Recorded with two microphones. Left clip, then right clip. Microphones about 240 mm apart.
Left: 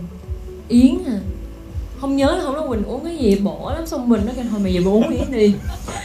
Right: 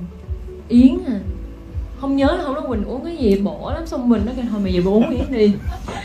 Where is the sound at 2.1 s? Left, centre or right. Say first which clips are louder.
Even; left.